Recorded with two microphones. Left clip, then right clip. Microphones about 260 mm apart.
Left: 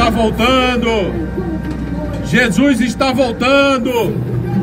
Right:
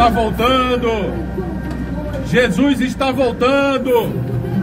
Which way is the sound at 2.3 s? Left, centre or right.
Left.